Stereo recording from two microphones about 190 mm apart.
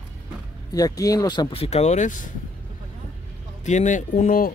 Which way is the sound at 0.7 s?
20° left (ahead or behind).